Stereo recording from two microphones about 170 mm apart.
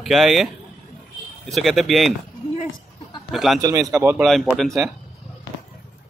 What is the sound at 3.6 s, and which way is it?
Speech, 20° right (ahead or behind).